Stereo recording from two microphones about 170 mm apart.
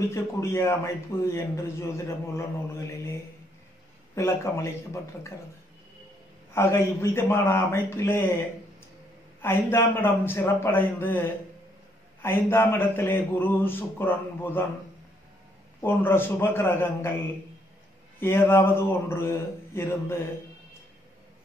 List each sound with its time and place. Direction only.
0.1 s a man's voice: 15° left (ahead or behind)
6.5 s a man's voice: 15° left (ahead or behind)
9.4 s a man's voice: 15° left (ahead or behind)
15.8 s a man's voice: 15° left (ahead or behind)
18.2 s a man's voice: 15° left (ahead or behind)